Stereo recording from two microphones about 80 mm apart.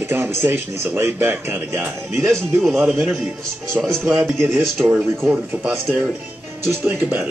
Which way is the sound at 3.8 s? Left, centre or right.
Centre.